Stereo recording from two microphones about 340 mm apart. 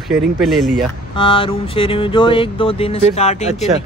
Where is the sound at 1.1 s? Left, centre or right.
Centre.